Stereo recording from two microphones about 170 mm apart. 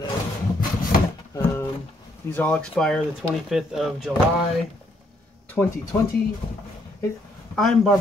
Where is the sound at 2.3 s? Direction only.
5° left (ahead or behind).